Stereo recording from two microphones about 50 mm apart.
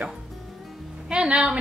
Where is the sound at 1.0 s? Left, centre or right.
Centre.